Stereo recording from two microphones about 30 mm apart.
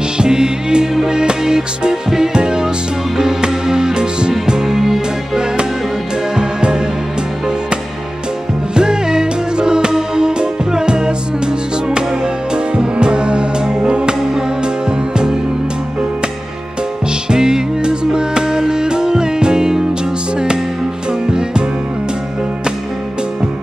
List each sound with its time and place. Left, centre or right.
0.2 s music: right
4.7 s music: centre
6.3 s music: right
8.7 s music: right
17.3 s music: right
21.3 s music: right